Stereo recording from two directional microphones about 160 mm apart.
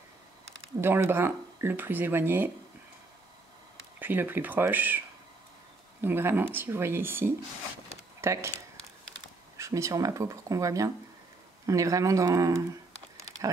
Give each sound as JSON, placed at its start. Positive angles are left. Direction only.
{"t": 0.7, "sound": "speech", "side_deg": -15}
{"t": 4.0, "sound": "speech", "side_deg": -10}
{"t": 9.6, "sound": "speech", "side_deg": -20}